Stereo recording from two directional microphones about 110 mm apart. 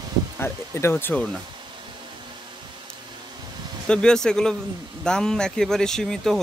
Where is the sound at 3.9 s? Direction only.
5° left (ahead or behind).